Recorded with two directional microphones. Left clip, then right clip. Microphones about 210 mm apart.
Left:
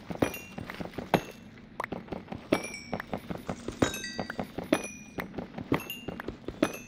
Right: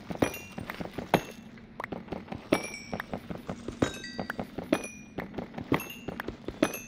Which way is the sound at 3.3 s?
15° left (ahead or behind).